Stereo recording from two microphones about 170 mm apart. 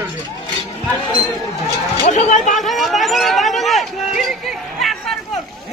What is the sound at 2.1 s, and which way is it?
Speech, 45° left (ahead or behind).